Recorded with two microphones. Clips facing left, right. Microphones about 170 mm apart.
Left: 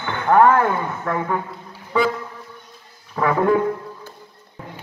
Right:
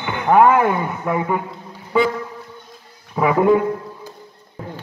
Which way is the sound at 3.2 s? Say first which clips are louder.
Right 3 dB; 10° right (ahead or behind).